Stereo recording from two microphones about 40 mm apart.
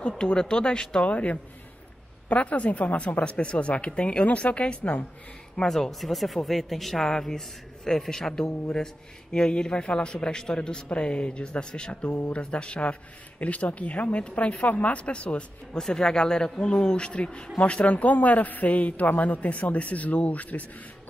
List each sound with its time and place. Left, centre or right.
0.2 s speech: centre
1.0 s a man's voice: left
5.7 s a man's voice: centre; by 15.8 s left
15.8 s a man's voice: centre; by 20.6 s left